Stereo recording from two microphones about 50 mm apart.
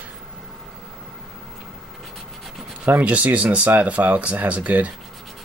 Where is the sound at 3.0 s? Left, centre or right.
Right.